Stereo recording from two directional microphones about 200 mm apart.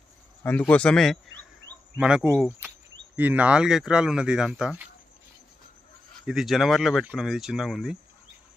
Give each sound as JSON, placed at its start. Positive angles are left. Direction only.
{"t": 0.4, "sound": "speech", "side_deg": 10}
{"t": 6.2, "sound": "speech", "side_deg": 0}